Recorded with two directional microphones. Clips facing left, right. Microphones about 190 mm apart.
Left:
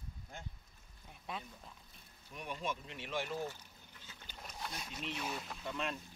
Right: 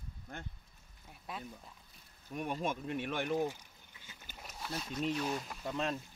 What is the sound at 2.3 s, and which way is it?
Speech, 50° right (ahead or behind).